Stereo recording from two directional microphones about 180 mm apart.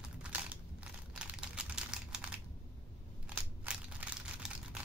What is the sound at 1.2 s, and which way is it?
Typing, 5° right (ahead or behind).